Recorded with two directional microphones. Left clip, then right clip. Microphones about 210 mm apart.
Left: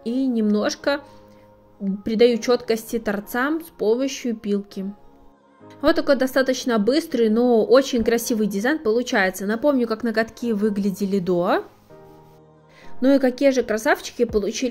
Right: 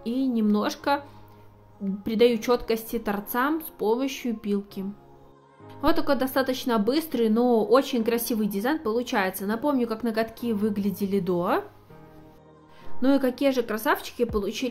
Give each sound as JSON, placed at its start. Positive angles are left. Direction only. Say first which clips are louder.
{"t": 0.0, "sound": "a sound", "louder": "left 4 dB", "side_deg": 10}
{"t": 2.0, "sound": "a woman's voice", "louder": "left 4 dB", "side_deg": 10}
{"t": 13.0, "sound": "a woman's voice", "louder": "left 6 dB", "side_deg": 15}